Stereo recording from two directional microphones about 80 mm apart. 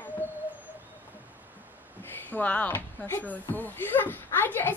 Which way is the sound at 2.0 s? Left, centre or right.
Left.